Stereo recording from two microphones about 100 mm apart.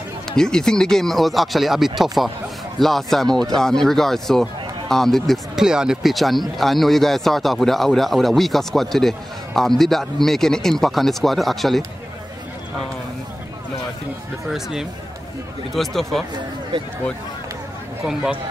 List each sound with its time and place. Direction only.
0.4 s speech: 5° left (ahead or behind)
14.5 s speech: 5° right (ahead or behind)
18.0 s speech: 5° right (ahead or behind)